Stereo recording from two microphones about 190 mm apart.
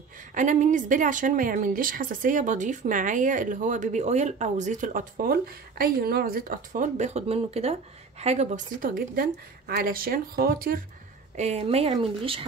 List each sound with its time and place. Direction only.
0.3 s speech: 40° right (ahead or behind)
11.3 s a woman's voice: 35° right (ahead or behind)